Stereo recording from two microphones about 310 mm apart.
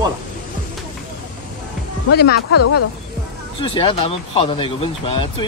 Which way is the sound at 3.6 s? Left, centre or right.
Centre.